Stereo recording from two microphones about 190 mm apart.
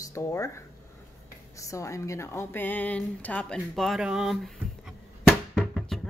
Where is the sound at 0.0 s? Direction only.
15° left (ahead or behind); by 4.9 s centre (ahead or behind).